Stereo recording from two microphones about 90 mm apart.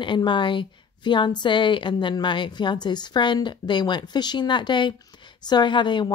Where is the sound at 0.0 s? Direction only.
60° left (ahead or behind).